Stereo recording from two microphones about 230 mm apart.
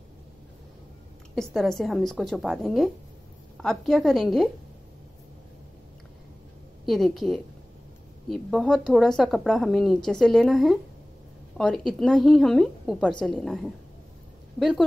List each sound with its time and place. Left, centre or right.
1.3 s a woman's voice: centre
6.9 s a woman's voice: centre